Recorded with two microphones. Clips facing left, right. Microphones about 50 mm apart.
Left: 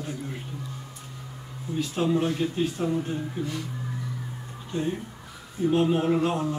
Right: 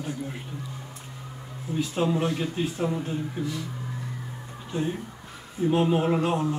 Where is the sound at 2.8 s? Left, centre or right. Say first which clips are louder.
Right 1 dB; centre.